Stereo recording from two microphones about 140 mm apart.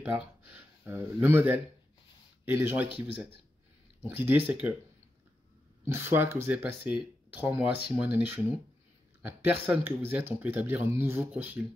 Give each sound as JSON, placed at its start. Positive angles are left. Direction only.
{"t": 0.0, "sound": "speech", "side_deg": -15}
{"t": 4.1, "sound": "speech", "side_deg": -15}
{"t": 5.9, "sound": "speech", "side_deg": -20}